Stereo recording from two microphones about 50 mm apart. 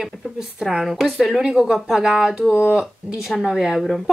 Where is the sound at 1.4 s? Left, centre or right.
Centre.